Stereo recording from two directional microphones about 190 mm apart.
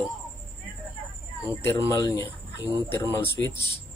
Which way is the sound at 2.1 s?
10° right (ahead or behind).